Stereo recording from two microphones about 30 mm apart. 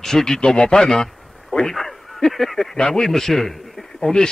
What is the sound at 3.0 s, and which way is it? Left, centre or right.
Speech, centre.